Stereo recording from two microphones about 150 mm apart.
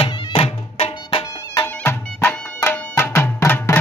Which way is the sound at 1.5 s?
15° left (ahead or behind).